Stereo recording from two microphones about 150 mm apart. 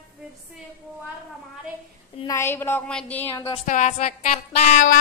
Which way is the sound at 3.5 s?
50° left (ahead or behind).